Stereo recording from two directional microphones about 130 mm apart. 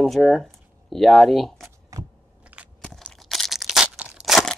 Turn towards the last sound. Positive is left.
turn(degrees=0)  # may be behind; listen again after turning